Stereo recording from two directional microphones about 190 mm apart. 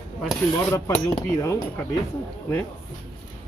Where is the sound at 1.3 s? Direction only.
15° left (ahead or behind).